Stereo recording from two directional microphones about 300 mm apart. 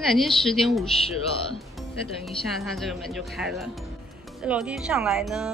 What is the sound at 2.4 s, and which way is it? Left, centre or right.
Speech, centre.